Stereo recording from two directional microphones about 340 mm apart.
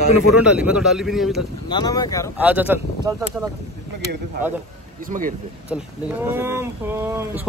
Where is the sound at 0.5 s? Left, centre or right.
Centre.